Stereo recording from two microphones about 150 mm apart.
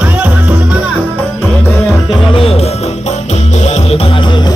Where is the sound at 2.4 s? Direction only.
40° left (ahead or behind).